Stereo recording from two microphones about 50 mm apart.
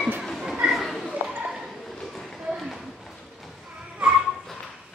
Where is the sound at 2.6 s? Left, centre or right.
Centre.